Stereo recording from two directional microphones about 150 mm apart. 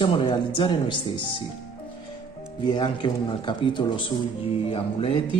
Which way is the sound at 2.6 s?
30° left (ahead or behind).